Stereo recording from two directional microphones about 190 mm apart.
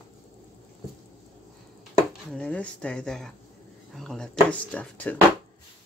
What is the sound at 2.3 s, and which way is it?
Speech, 5° left (ahead or behind).